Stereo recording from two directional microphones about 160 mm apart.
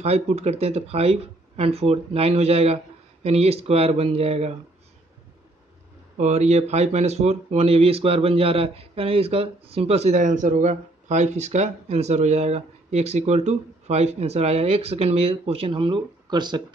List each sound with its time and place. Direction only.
0.0 s speech: 40° right (ahead or behind)
6.1 s speech: 45° right (ahead or behind); by 16.6 s 25° right (ahead or behind)